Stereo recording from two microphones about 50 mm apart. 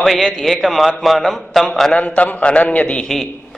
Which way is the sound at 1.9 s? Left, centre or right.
Left.